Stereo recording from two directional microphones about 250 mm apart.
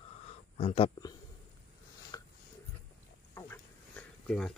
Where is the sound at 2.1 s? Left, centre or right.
Centre.